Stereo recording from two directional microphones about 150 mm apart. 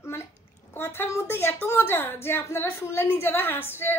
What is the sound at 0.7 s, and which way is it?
A woman's voice, 15° left (ahead or behind).